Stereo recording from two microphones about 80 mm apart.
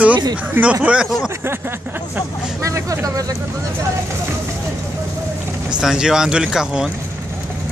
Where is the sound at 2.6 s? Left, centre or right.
Right.